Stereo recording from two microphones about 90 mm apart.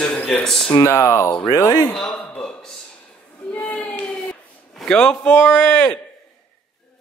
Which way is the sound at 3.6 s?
15° left (ahead or behind).